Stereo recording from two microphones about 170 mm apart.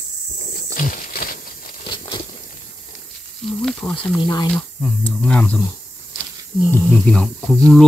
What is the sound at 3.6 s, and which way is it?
Mantra, 5° left (ahead or behind).